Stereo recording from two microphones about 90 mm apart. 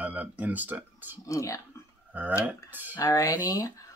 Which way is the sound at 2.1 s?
20° right (ahead or behind).